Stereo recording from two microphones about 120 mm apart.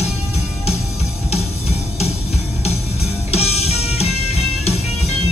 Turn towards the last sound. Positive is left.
turn(degrees=60)  # may be behind; listen again after turning